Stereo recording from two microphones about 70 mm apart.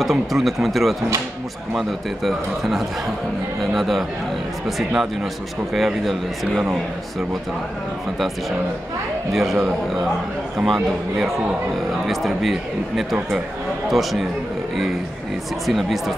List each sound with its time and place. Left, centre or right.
0.0 s speech: centre
9.3 s speech: centre
15.6 s speech: centre